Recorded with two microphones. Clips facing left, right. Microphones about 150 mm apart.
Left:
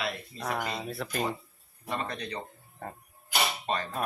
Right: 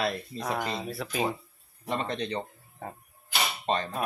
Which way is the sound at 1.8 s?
20° right (ahead or behind).